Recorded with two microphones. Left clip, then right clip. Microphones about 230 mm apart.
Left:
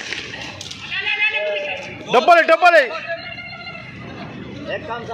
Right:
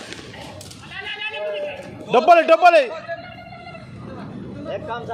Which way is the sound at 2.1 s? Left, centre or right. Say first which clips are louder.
Left 1 dB; centre.